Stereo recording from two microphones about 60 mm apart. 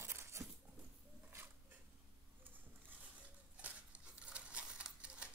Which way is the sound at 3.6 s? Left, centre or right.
Right.